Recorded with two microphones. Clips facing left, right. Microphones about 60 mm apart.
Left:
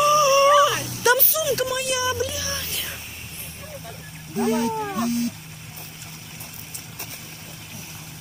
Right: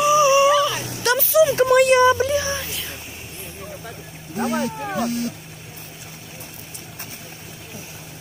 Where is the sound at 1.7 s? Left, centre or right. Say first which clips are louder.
Right 11 dB; right.